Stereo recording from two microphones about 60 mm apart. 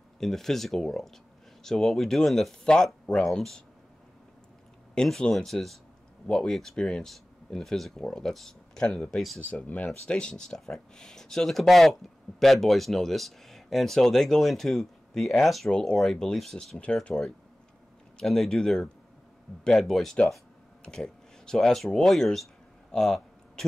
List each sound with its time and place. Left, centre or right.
0.2 s speech: centre
4.9 s speech: centre
15.7 s speech: centre
18.2 s speech: centre